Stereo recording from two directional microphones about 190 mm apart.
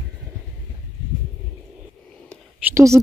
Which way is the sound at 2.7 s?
15° right (ahead or behind).